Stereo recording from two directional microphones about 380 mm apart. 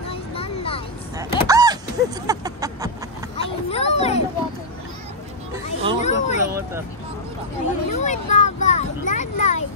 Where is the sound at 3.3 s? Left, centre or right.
Centre.